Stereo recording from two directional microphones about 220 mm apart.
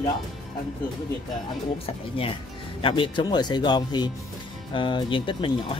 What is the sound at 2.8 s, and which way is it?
Speech, 20° left (ahead or behind).